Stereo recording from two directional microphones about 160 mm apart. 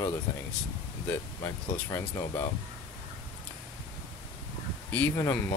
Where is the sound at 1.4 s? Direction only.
20° left (ahead or behind).